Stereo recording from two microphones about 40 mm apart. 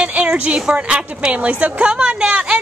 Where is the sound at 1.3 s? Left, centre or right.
Right.